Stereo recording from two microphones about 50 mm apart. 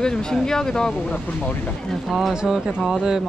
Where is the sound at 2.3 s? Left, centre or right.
Centre.